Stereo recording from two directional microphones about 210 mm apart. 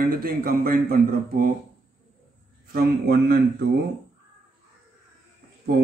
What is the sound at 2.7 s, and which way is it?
Speech, 45° right (ahead or behind).